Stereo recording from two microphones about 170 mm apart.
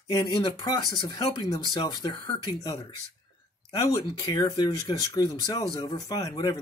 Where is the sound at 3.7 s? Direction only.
20° left (ahead or behind).